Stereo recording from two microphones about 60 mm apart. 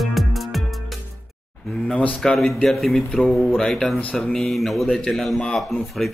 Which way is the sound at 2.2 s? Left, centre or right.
Centre.